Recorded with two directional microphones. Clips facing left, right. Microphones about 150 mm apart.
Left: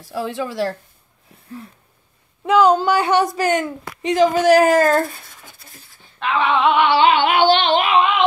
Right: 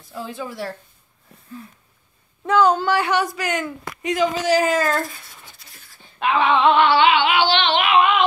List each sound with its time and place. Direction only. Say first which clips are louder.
0.0 s speech: left 6 dB; 85° left
2.4 s speech: left 3 dB; 10° left (ahead or behind)
3.1 s speech: left 5 dB; 35° left (ahead or behind)
3.6 s speech: left 3 dB; 30° left (ahead or behind)
4.4 s a child's voice: left 8 dB; 50° left (ahead or behind)
6.1 s female singing: right 1 dB; centre (ahead or behind)
7.1 s music: left 3 dB; 50° left (ahead or behind)